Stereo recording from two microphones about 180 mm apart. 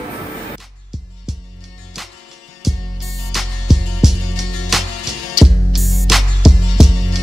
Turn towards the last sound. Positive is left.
turn(degrees=0)  # may be behind; listen again after turning